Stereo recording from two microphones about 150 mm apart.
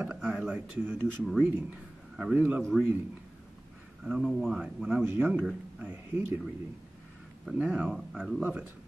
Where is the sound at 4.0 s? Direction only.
5° right (ahead or behind).